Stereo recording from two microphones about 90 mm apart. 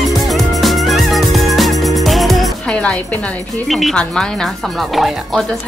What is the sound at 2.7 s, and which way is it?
Speech, 10° left (ahead or behind).